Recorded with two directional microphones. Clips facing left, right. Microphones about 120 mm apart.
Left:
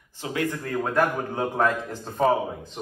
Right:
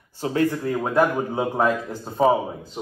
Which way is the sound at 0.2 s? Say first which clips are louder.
Right 6 dB; 35° right (ahead or behind).